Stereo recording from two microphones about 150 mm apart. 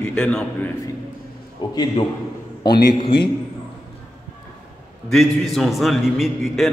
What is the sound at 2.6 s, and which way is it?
Speech, 30° left (ahead or behind).